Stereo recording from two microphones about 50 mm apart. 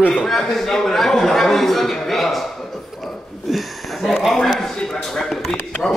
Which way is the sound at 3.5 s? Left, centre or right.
Centre.